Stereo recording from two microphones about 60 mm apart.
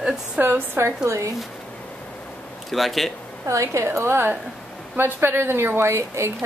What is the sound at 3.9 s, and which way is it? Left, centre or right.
A woman's voice, right.